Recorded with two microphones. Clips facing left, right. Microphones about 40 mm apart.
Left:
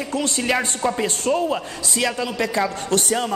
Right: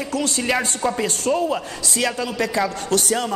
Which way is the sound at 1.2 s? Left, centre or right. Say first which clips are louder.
Right 1 dB; left.